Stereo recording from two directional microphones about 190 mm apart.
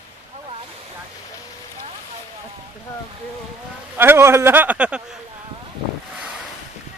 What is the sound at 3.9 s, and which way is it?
Speech, 10° right (ahead or behind).